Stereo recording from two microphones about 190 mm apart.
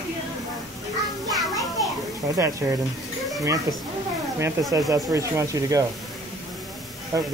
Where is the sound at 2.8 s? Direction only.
Centre (ahead or behind).